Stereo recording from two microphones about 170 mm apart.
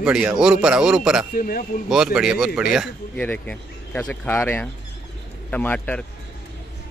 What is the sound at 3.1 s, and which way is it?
Speech, 10° left (ahead or behind).